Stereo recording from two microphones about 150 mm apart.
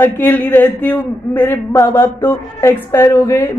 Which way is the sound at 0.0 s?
10° left (ahead or behind).